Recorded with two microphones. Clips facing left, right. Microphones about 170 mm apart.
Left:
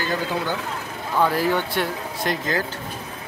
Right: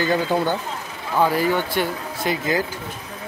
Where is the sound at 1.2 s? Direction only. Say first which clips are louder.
Right 1 dB; centre (ahead or behind).